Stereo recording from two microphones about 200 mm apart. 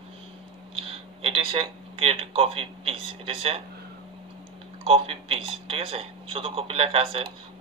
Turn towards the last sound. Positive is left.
turn(degrees=-30)  # may be behind; listen again after turning